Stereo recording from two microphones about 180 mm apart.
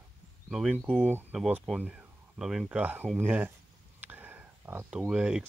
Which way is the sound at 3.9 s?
10° right (ahead or behind).